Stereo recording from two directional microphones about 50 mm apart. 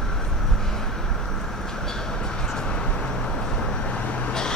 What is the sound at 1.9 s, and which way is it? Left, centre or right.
Vehicle, centre.